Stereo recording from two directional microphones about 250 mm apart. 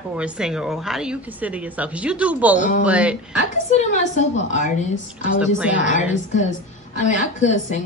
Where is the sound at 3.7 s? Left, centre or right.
Left.